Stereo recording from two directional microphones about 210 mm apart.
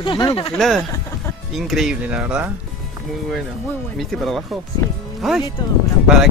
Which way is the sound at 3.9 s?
Centre (ahead or behind).